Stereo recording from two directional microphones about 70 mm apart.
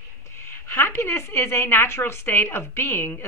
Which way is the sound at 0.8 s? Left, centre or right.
Left.